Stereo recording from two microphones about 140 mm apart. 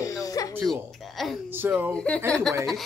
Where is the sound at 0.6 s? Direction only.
Centre (ahead or behind).